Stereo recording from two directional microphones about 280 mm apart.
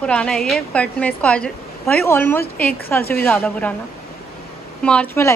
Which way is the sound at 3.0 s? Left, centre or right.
Left.